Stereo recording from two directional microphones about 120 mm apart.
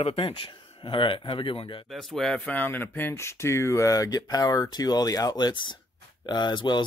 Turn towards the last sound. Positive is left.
turn(degrees=40)  # may be behind; listen again after turning